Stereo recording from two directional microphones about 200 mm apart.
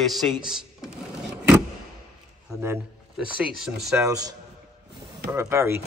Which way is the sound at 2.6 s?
15° right (ahead or behind).